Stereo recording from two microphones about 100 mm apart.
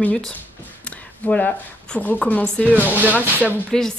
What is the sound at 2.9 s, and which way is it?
Speech, 15° right (ahead or behind).